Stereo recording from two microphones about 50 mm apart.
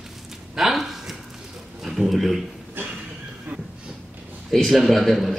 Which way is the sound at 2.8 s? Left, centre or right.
Right.